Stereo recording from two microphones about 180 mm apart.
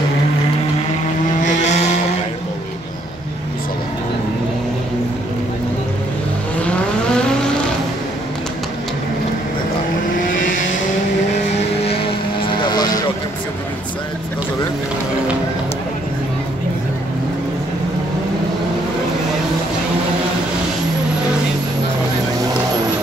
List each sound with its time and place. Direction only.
1.4 s vehicle: 40° left (ahead or behind)
6.6 s vehicle: 5° left (ahead or behind)
11.8 s vehicle: 30° left (ahead or behind)